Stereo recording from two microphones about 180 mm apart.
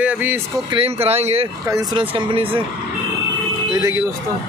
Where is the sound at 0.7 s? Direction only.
35° right (ahead or behind).